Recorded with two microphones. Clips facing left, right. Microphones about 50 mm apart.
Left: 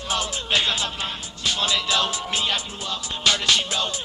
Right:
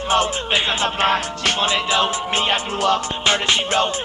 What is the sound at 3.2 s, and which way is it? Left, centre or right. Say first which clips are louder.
Music: left 1 dB; right.